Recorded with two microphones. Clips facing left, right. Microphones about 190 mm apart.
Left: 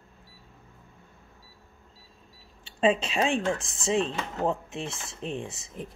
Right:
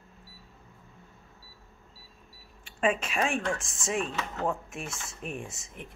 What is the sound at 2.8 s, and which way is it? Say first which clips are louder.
Speech: left 4 dB; 30° left (ahead or behind).